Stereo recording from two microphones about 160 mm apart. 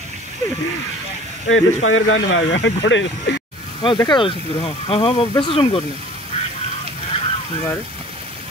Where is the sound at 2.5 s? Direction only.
90° left.